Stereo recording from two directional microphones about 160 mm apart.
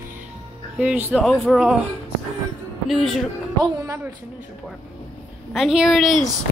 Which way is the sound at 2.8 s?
Centre (ahead or behind).